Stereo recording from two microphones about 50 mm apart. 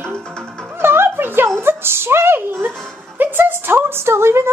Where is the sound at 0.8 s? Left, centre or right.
Right.